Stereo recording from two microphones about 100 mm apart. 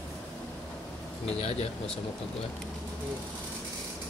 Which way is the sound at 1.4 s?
90° left.